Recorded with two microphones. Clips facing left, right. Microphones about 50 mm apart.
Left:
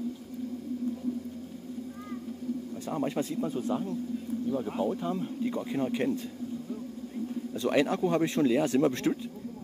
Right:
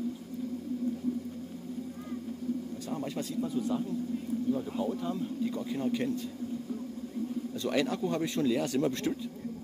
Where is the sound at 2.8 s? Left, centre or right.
Left.